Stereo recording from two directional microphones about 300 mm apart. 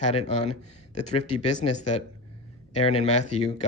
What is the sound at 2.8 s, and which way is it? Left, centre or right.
Speech, centre.